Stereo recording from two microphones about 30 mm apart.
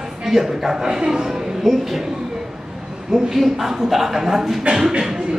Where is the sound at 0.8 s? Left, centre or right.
Right.